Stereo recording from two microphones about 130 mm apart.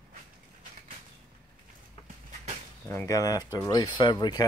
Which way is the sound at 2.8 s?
20° left (ahead or behind).